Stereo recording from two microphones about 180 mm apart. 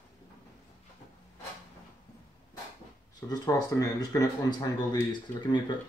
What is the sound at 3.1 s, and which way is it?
Speech, 20° left (ahead or behind).